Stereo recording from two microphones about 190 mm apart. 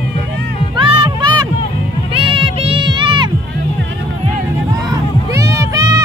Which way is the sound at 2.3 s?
30° right (ahead or behind).